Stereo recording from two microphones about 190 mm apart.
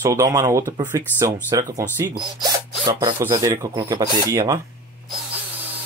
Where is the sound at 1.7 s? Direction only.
15° right (ahead or behind).